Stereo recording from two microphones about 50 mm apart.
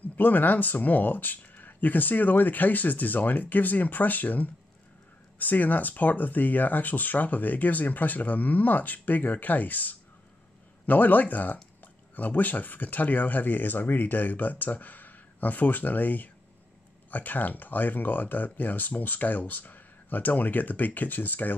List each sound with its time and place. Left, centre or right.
0.0 s speech: left